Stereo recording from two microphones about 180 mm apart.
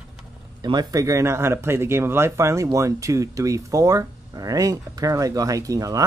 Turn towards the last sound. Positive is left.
turn(degrees=-20)  # may be behind; listen again after turning